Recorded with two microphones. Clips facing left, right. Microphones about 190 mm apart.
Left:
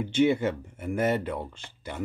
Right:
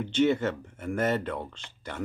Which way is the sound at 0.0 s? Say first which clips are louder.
Left 1 dB; 10° left (ahead or behind).